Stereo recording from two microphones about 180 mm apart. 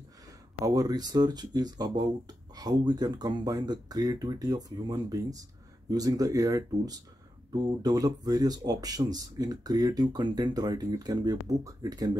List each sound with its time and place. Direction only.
0.7 s speech: 20° right (ahead or behind)